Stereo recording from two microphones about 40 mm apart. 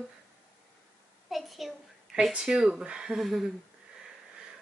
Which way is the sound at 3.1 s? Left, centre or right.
Centre.